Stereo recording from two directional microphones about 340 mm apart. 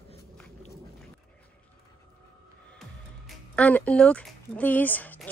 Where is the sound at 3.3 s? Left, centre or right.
Centre.